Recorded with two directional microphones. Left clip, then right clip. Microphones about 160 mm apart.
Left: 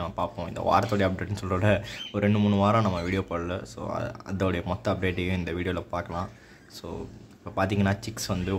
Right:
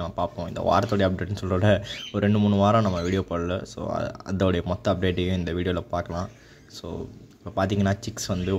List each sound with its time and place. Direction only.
0.0 s speech: 20° right (ahead or behind)
7.5 s speech: 20° right (ahead or behind)